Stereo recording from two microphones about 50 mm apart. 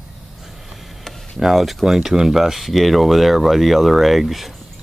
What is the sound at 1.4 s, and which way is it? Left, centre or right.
Speech, centre.